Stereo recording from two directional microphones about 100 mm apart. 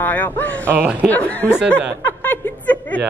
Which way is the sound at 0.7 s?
20° right (ahead or behind).